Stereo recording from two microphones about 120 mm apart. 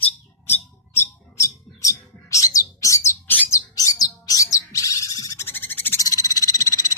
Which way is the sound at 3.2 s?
15° left (ahead or behind).